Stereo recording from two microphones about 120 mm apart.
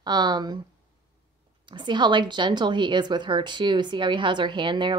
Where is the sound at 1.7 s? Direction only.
40° right (ahead or behind).